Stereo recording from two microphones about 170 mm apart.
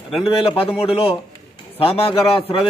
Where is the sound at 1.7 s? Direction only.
35° left (ahead or behind).